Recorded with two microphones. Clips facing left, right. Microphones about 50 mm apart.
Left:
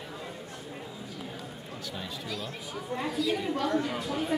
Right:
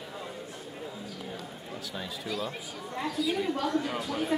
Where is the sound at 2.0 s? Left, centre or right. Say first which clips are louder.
Right 4 dB; centre.